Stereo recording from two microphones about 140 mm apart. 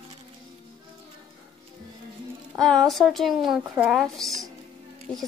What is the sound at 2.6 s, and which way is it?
Speech, 5° left (ahead or behind).